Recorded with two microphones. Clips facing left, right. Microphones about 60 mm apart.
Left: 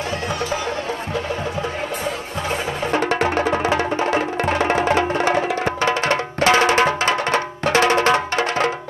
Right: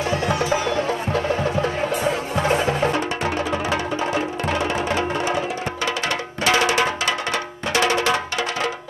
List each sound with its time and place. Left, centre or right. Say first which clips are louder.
3.2 s music: left 4 dB; left